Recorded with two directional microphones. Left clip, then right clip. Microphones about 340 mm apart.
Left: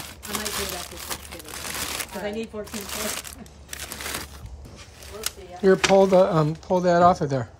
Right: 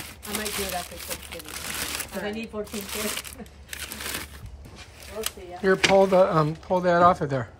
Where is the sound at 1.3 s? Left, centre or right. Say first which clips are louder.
Even; centre.